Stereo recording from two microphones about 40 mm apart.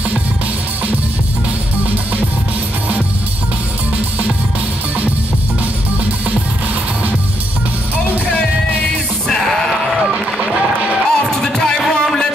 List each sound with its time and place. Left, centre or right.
9.3 s sheep: centre
10.1 s run: centre
11.1 s music: centre